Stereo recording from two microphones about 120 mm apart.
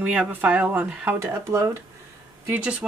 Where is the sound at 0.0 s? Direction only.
10° right (ahead or behind).